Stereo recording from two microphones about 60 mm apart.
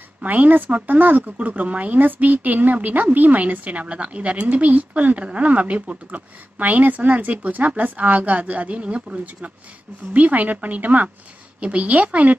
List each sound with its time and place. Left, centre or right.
0.2 s speech: right